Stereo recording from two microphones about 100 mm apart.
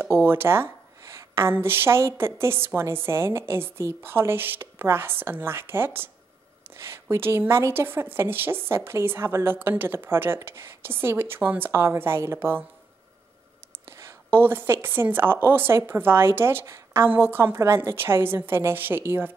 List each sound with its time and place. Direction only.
0.0 s a woman's voice: 25° right (ahead or behind)
13.9 s a woman's voice: 20° right (ahead or behind)